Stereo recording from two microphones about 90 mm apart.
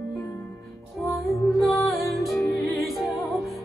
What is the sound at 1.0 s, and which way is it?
Music, centre (ahead or behind).